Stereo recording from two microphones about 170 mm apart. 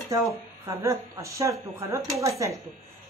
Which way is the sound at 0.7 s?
15° right (ahead or behind).